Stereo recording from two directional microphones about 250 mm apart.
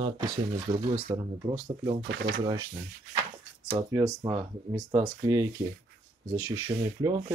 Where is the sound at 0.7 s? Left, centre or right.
Right.